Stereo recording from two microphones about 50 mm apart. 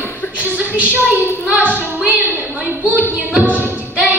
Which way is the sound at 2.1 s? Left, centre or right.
Right.